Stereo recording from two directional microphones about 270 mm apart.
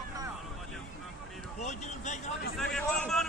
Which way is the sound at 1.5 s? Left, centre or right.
Left.